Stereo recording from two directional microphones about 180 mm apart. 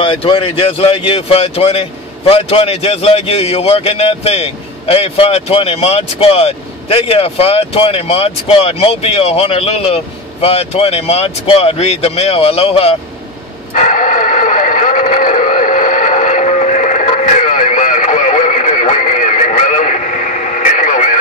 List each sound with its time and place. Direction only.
0.0 s speech: 30° left (ahead or behind)
13.7 s radio: 45° left (ahead or behind)